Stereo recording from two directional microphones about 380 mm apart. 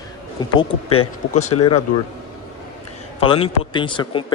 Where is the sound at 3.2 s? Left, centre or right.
Centre.